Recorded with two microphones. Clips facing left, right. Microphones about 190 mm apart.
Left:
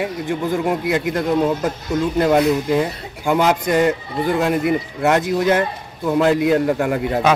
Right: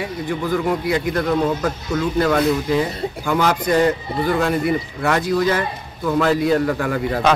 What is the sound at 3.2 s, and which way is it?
Speech, 20° left (ahead or behind).